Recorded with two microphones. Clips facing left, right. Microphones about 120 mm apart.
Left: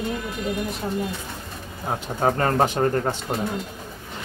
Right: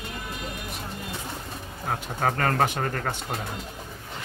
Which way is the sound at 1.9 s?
25° left (ahead or behind).